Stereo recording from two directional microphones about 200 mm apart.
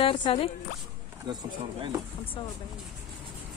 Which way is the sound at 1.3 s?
20° right (ahead or behind).